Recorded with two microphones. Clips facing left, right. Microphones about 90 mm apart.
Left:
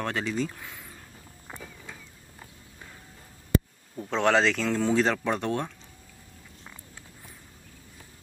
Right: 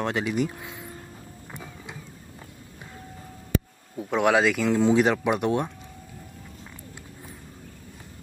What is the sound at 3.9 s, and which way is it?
Speech, 10° right (ahead or behind).